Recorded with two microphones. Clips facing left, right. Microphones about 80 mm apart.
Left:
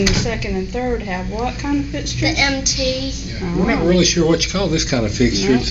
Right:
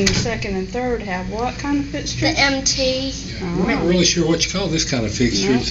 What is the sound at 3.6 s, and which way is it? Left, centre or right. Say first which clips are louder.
Speech: left 2 dB; centre.